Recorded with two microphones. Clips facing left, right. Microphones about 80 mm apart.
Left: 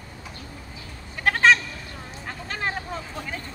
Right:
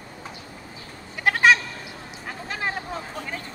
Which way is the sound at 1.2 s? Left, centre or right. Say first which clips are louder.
Even; centre.